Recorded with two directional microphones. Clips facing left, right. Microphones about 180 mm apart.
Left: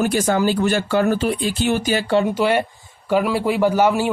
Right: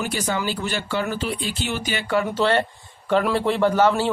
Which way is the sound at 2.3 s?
10° left (ahead or behind).